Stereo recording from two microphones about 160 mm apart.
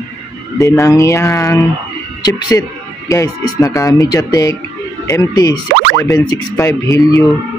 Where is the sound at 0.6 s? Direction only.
20° left (ahead or behind).